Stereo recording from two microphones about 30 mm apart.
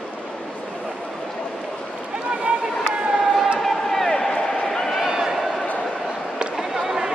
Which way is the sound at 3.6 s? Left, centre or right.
Centre.